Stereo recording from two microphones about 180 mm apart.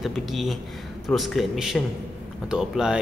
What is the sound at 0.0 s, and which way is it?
A man's voice, centre (ahead or behind).